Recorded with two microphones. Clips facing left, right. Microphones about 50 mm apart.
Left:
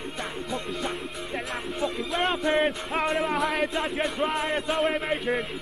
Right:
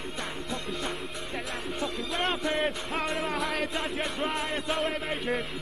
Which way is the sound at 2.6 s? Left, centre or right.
Centre.